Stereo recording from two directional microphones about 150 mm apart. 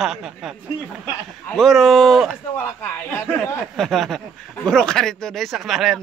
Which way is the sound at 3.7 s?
Centre (ahead or behind).